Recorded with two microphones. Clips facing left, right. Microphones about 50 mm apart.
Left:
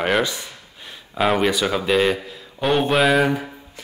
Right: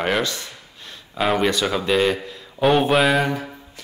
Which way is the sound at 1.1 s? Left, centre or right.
Centre.